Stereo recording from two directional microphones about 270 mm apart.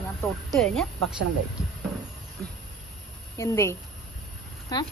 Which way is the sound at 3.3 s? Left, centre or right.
Centre.